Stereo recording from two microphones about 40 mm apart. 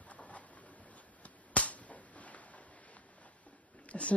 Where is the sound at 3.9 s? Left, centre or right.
Left.